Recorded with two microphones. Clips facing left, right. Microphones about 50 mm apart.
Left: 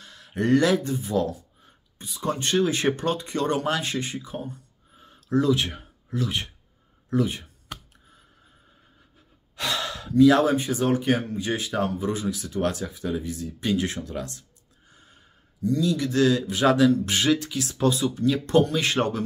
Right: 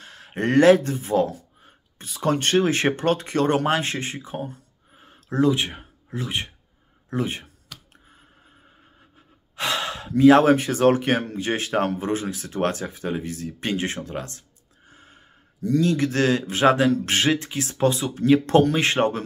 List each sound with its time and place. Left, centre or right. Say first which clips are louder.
0.0 s speech: even; right
4.9 s a sound: left 1 dB; right
7.1 s speech: left 2 dB; right
9.6 s sigh: right 3 dB; right
10.5 s speech: right 5 dB; right
13.7 s speech: even; right
14.9 s gasp: right 4 dB; right
15.6 s speech: right 3 dB; right